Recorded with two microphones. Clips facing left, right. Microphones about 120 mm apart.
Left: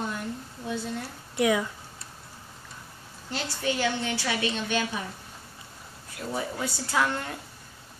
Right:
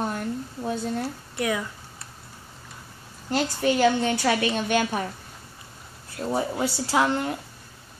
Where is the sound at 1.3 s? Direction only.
15° left (ahead or behind).